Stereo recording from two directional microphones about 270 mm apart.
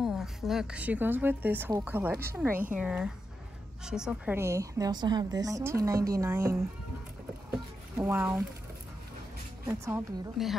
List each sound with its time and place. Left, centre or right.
0.0 s a woman's voice: centre
7.5 s a sound: centre
9.7 s a woman's voice: centre